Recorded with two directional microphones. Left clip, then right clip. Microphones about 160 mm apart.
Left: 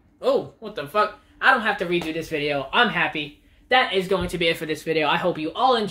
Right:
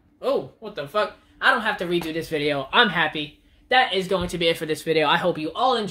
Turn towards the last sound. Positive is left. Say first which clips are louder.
# left 2 dB
turn(degrees=-10)  # may be behind; listen again after turning